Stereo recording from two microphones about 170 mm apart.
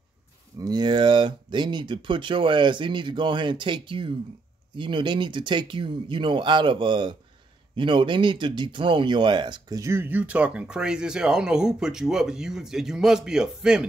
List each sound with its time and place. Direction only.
0.6 s speech: 25° right (ahead or behind); by 13.8 s 5° right (ahead or behind)